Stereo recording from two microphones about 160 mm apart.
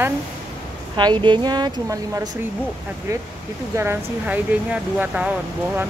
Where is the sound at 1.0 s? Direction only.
30° right (ahead or behind).